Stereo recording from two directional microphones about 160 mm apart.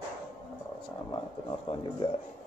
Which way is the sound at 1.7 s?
35° left (ahead or behind).